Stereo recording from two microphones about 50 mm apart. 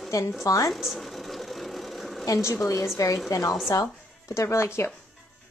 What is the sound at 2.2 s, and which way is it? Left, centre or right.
Speech, left.